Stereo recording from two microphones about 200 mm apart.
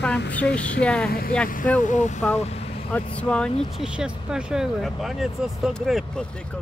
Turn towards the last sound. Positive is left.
turn(degrees=0)  # may be behind; listen again after turning